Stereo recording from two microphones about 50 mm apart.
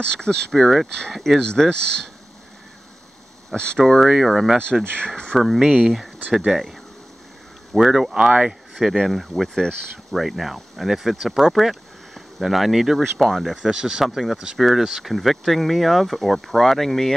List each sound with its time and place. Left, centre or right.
0.0 s speech: centre
0.5 s speech: centre
1.4 s speech: centre
3.5 s speech: centre
4.0 s speech: centre
4.9 s speech: centre
5.4 s speech: centre
13.7 s speech: centre
14.4 s speech: centre